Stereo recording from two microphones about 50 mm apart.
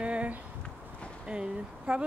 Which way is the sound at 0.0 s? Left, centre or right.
Right.